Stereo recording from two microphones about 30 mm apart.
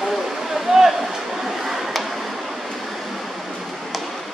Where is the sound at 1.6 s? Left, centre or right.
Centre.